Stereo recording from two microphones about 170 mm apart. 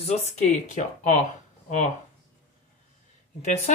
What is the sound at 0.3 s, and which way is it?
Speech, 40° left (ahead or behind).